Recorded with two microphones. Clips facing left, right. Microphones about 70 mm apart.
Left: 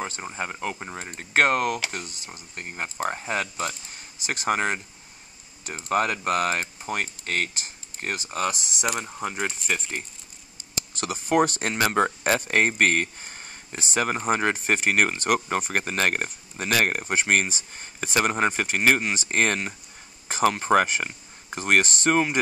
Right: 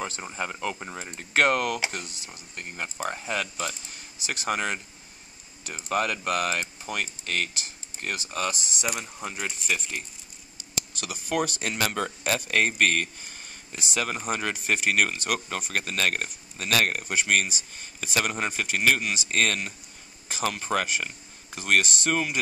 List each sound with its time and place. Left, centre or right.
0.2 s speech: left